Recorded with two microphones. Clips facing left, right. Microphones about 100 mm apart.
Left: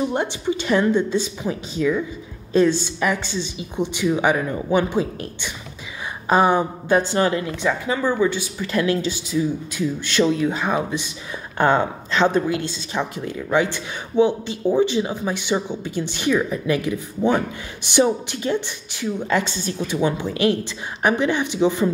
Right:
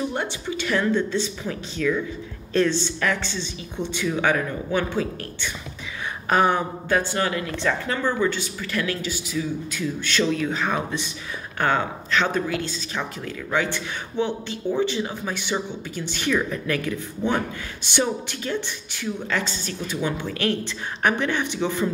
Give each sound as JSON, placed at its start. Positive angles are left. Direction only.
{"t": 0.0, "sound": "a woman's voice", "side_deg": 20}
{"t": 7.6, "sound": "a woman's voice", "side_deg": 10}
{"t": 18.0, "sound": "a woman's voice", "side_deg": 20}